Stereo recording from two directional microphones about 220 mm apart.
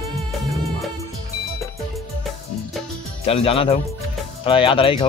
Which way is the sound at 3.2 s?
25° left (ahead or behind).